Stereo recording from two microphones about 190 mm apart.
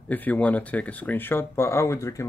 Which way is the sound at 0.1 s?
10° left (ahead or behind).